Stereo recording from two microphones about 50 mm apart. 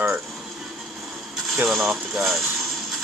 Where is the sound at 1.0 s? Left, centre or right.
Centre.